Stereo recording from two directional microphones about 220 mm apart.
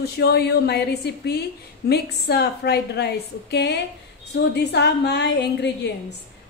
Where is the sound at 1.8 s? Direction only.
50° left (ahead or behind).